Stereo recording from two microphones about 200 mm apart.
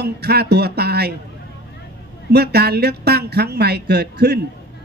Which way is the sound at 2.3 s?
55° right (ahead or behind).